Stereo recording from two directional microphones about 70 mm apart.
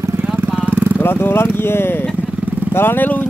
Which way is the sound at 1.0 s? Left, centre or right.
Left.